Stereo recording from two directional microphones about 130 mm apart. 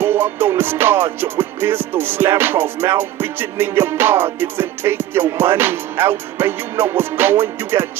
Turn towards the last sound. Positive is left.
turn(degrees=-15)  # may be behind; listen again after turning